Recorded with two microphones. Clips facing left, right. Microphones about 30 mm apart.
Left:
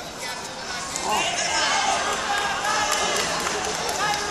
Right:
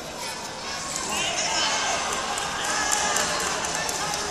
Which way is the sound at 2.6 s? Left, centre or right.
Left.